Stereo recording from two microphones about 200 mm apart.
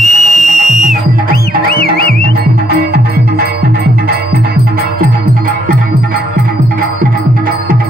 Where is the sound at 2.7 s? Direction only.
50° right (ahead or behind).